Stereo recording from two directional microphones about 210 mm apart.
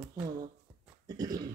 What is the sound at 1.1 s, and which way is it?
Speech, 20° right (ahead or behind).